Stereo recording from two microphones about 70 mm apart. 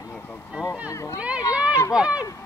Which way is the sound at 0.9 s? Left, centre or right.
Left.